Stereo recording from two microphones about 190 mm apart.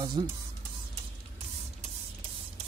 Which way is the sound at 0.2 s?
25° right (ahead or behind).